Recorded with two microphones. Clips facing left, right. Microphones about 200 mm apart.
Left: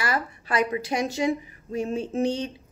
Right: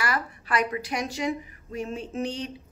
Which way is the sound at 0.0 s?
25° left (ahead or behind).